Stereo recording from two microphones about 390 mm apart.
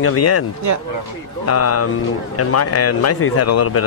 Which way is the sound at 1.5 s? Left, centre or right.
Left.